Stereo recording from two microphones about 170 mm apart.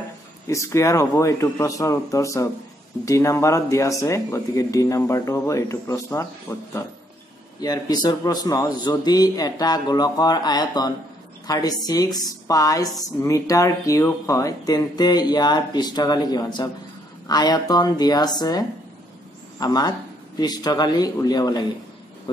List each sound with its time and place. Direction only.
0.5 s a woman's voice: 15° left (ahead or behind)